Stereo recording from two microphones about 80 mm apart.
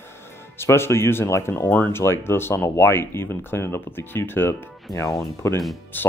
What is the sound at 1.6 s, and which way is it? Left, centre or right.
Speech, left.